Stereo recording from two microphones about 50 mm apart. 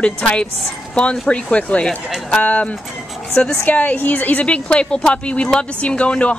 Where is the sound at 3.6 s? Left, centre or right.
Left.